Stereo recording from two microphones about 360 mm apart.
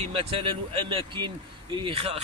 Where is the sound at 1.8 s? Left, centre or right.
Centre.